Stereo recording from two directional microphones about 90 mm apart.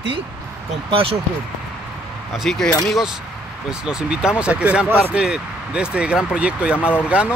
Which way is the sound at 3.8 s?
10° right (ahead or behind).